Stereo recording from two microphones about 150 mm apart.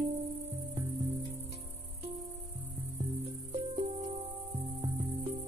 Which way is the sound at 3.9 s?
50° right (ahead or behind).